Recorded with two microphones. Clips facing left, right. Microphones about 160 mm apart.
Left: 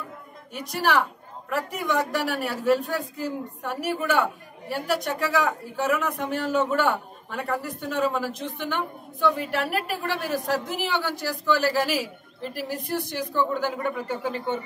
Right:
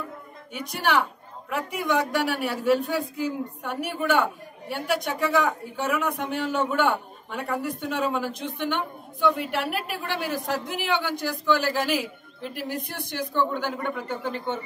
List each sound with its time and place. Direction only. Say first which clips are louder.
0.5 s a man's voice: left 1 dB; centre (ahead or behind)